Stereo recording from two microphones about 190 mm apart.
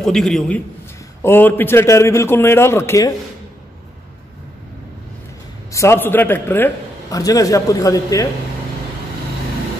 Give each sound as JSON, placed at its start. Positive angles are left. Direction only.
{"t": 0.0, "sound": "a man's voice", "side_deg": 0}
{"t": 5.7, "sound": "a man's voice", "side_deg": 15}